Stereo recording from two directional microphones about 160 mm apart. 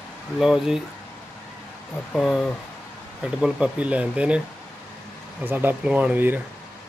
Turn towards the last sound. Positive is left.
turn(degrees=-10)  # may be behind; listen again after turning